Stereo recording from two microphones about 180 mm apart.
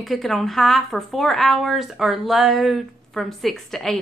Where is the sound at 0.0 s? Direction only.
Centre (ahead or behind).